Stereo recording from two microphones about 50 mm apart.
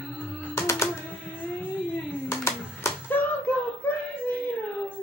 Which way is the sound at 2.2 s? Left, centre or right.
Left.